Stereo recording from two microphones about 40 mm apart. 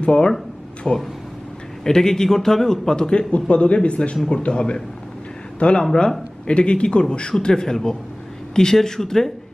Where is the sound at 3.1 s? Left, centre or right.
Left.